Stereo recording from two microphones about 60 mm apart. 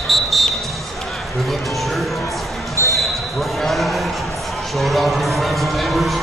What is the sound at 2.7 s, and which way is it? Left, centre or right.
Basketball bounce, left.